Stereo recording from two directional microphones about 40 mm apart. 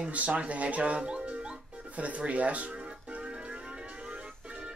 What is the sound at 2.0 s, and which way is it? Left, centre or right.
Speech, right.